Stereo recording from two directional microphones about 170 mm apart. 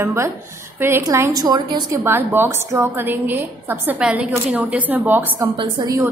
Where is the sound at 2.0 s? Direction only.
15° right (ahead or behind).